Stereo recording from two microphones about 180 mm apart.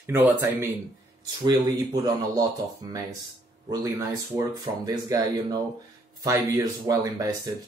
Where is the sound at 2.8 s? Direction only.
20° right (ahead or behind).